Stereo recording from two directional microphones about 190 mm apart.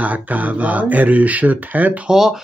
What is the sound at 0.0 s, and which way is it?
Speech, 10° right (ahead or behind).